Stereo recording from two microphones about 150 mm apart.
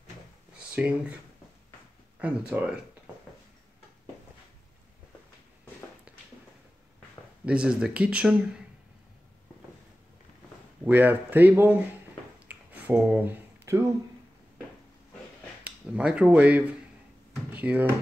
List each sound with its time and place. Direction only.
2.1 s speech: 10° right (ahead or behind)
6.1 s a sound: 10° right (ahead or behind)
7.4 s speech: 5° right (ahead or behind)
10.8 s speech: 10° right (ahead or behind)
12.4 s finger snapping: 10° right (ahead or behind)
15.6 s speech: 5° right (ahead or behind)